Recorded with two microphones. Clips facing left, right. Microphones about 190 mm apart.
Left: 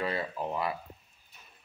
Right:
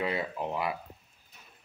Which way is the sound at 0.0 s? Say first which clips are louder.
Right 1 dB; 20° right (ahead or behind).